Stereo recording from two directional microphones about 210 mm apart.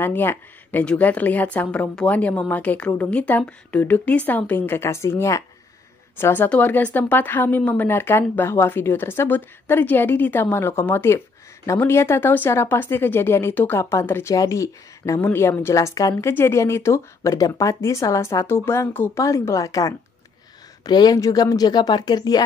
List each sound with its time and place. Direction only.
0.0 s a woman's voice: 10° left (ahead or behind)